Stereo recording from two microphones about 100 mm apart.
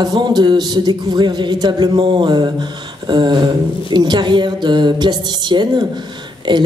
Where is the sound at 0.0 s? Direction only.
45° right (ahead or behind).